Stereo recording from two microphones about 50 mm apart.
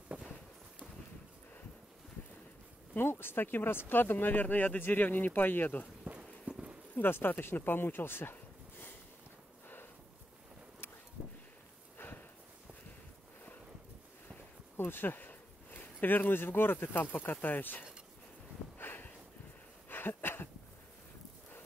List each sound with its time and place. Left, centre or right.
0.1 s walk: right
2.9 s speech: left
6.5 s clip-clop: right
7.0 s speech: left
14.8 s speech: left
18.8 s a sound: left